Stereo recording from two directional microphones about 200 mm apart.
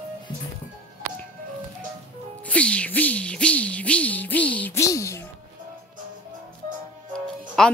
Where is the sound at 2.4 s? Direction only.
5° left (ahead or behind).